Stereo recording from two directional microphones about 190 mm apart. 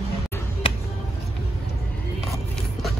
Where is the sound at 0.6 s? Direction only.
25° left (ahead or behind).